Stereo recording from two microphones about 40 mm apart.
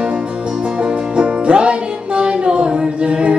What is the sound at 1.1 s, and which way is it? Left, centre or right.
Music, right.